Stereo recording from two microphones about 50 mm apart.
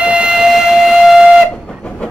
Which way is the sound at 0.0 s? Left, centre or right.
Right.